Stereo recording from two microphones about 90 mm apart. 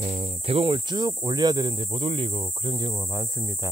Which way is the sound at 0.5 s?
90° right.